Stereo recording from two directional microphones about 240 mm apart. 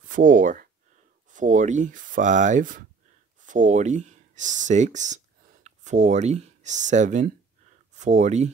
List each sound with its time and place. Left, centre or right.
0.1 s speech: right